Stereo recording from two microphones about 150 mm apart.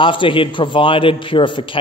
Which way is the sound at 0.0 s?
35° left (ahead or behind).